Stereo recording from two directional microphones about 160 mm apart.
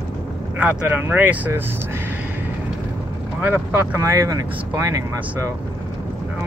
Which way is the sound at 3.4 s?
10° right (ahead or behind).